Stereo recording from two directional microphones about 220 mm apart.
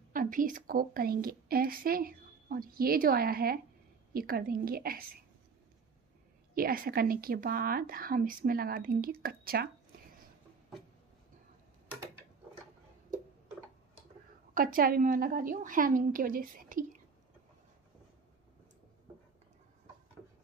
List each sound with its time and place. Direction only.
0.1 s a woman's voice: 40° right (ahead or behind)
6.5 s a woman's voice: 40° right (ahead or behind)
14.5 s a woman's voice: 40° right (ahead or behind)